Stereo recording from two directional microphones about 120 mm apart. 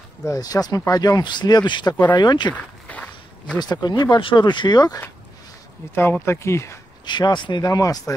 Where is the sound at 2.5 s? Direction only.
10° left (ahead or behind).